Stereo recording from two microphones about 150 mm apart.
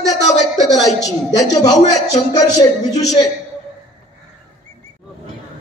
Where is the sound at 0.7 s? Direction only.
25° left (ahead or behind).